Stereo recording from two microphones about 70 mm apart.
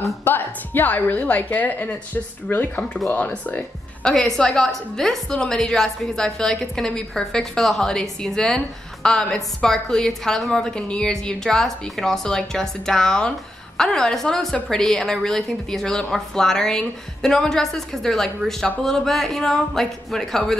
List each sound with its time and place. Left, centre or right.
0.2 s a woman's voice: left
4.0 s a woman's voice: centre